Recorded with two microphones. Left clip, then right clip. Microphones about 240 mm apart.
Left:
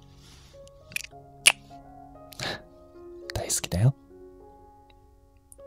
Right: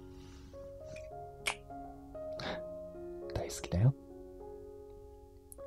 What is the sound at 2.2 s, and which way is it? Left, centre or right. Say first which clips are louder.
Music: left 5 dB; left.